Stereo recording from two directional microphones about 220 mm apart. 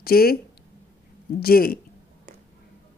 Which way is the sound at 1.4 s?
45° left (ahead or behind).